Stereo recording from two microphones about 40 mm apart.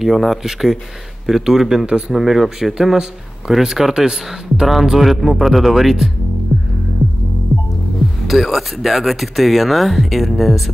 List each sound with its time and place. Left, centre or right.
0.0 s speech: centre
2.1 s speech: centre
6.5 s music: right
8.3 s speech: centre